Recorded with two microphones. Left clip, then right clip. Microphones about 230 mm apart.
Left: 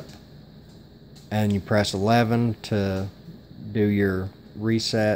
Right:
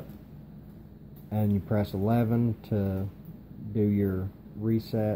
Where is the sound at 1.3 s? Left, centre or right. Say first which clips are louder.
Left 6 dB; left.